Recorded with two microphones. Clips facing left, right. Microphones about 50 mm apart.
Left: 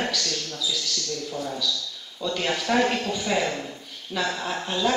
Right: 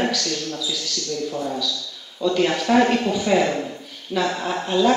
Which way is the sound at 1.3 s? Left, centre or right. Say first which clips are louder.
Right 3 dB; centre.